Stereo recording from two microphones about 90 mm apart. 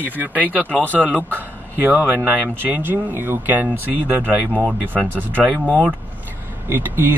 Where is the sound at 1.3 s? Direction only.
20° right (ahead or behind).